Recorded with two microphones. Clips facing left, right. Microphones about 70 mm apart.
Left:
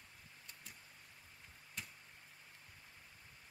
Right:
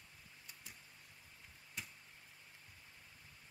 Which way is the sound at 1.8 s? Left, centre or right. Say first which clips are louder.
Even; centre.